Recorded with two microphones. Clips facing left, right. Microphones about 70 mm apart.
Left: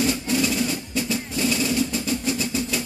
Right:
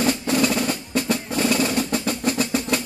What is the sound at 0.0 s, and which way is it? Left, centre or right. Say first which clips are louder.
Percussion: right 2 dB; right.